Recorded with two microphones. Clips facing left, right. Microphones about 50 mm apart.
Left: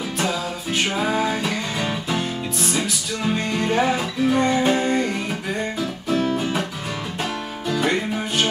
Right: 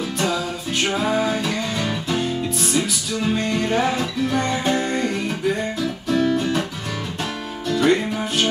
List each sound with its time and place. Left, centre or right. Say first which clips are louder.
0.9 s music: right 2 dB; centre
5.8 s music: right 2 dB; centre
7.6 s music: right 4 dB; centre